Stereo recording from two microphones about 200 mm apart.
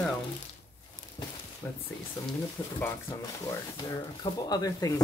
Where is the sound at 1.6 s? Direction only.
10° left (ahead or behind).